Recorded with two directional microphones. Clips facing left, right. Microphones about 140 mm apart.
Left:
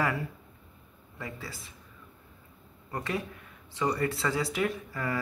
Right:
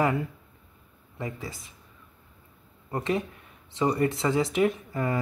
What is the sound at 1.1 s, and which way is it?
Speech, 20° right (ahead or behind).